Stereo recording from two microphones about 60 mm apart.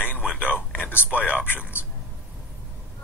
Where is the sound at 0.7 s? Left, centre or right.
Left.